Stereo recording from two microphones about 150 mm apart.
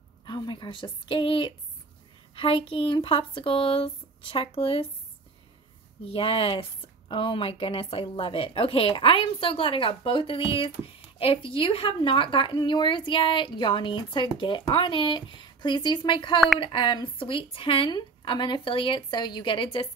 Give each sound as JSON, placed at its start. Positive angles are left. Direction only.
{"t": 0.2, "sound": "a woman's voice", "side_deg": 30}
{"t": 6.0, "sound": "a woman's voice", "side_deg": 40}